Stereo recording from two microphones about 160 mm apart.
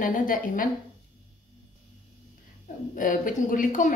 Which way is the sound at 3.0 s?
55° left (ahead or behind).